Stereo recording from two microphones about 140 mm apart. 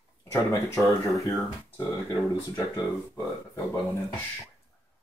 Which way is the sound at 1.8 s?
25° left (ahead or behind).